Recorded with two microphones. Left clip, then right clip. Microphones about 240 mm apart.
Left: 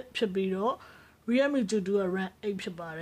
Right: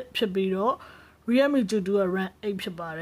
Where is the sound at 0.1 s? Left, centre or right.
Right.